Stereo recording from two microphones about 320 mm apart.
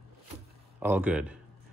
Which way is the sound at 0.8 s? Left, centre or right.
Centre.